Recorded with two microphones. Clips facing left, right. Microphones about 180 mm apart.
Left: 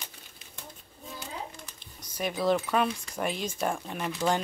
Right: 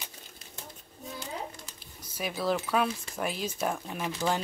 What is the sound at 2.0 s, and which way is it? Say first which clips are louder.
Speech: left 3 dB; 5° right (ahead or behind).